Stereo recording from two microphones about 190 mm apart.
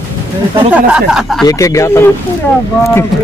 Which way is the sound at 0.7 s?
5° right (ahead or behind).